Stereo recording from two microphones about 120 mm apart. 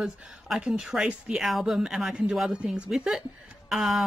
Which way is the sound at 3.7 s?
Centre (ahead or behind).